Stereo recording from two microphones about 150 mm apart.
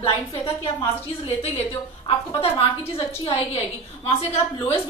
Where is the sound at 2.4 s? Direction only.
40° left (ahead or behind).